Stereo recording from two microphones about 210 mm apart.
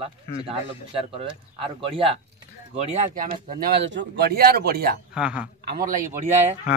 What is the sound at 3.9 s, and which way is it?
Speech, 55° right (ahead or behind).